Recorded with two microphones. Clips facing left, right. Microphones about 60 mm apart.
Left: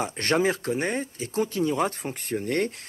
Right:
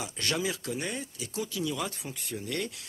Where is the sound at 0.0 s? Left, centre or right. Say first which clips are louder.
Left 8 dB; left.